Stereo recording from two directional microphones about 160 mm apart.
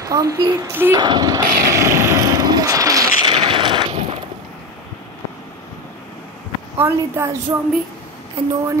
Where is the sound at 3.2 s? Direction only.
30° right (ahead or behind).